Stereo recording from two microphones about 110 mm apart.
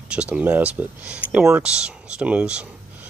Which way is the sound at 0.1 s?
10° right (ahead or behind).